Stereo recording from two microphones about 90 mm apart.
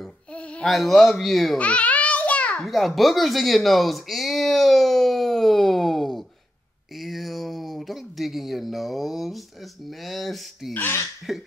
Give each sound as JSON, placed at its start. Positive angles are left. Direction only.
{"t": 0.0, "sound": "babbling", "side_deg": 15}
{"t": 0.7, "sound": "speech", "side_deg": 0}
{"t": 1.6, "sound": "a sound", "side_deg": 15}
{"t": 2.6, "sound": "a sound", "side_deg": 0}
{"t": 9.8, "sound": "speech", "side_deg": 0}
{"t": 10.7, "sound": "speech", "side_deg": 25}
{"t": 11.3, "sound": "speech", "side_deg": -5}